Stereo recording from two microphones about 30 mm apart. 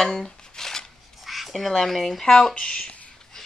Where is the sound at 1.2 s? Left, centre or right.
Centre.